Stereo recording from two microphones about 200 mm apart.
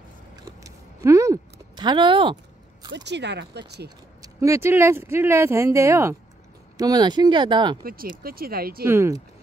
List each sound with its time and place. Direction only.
0.4 s a sound: 15° right (ahead or behind)
2.9 s speech: 60° right (ahead or behind)
4.2 s speech: 15° right (ahead or behind)
7.8 s speech: 45° right (ahead or behind)
8.8 s speech: 15° right (ahead or behind)